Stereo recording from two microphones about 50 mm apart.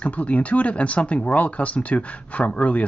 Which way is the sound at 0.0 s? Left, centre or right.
Left.